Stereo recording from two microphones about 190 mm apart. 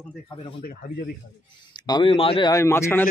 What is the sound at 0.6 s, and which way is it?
Speech, 50° left (ahead or behind).